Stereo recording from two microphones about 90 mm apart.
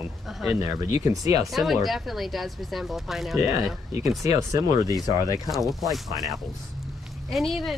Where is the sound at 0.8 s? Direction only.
35° right (ahead or behind).